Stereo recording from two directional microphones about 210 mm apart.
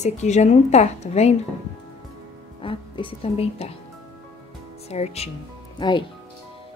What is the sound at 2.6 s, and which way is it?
Speech, 25° left (ahead or behind).